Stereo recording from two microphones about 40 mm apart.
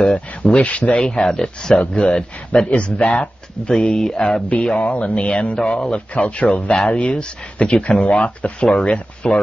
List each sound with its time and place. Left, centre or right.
0.0 s speech: left
3.7 s speech: centre
4.3 s speech: left